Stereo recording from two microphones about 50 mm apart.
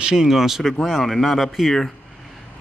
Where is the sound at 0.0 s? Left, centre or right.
Centre.